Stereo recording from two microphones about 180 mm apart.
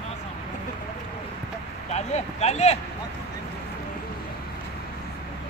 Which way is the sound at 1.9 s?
40° left (ahead or behind).